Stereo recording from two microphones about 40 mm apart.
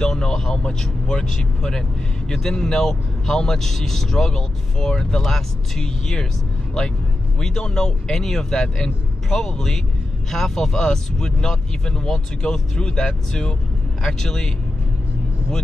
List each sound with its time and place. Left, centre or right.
0.0 s speech: centre
7.3 s speech: centre